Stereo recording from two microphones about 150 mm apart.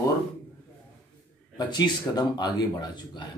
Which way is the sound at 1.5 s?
30° left (ahead or behind).